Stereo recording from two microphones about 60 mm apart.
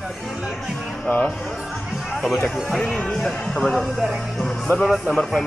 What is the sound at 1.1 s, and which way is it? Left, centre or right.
Speech, left.